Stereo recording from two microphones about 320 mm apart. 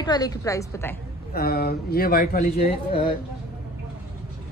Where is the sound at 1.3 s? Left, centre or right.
Left.